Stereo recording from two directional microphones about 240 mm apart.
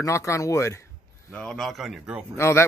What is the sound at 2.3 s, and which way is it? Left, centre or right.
Speech, centre.